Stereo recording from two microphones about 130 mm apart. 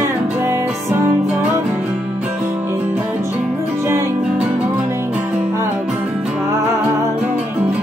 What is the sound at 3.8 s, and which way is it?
Music, 20° right (ahead or behind).